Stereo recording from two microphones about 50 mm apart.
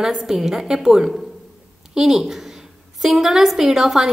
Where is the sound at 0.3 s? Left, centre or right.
Centre.